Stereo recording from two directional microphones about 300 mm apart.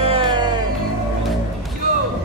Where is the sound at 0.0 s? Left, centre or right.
Centre.